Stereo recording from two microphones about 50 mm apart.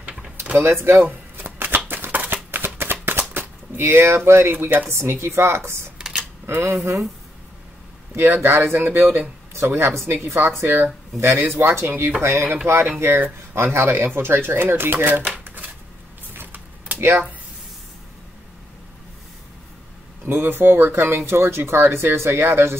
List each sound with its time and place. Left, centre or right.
0.7 s speech: right
1.0 s shuffling cards: right
4.9 s speech: right
5.9 s camera: centre
6.6 s speech: right
8.2 s speech: right
9.5 s speech: right
10.6 s speech: right
11.1 s speech: right
12.2 s speech: right
13.0 s speech: right
15.3 s shuffling cards: right
16.3 s vehicle: right
20.2 s speech: right